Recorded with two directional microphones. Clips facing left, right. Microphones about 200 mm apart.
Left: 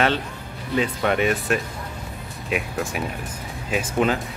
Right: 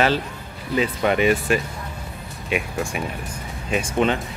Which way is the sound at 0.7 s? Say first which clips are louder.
Right 1 dB; centre (ahead or behind).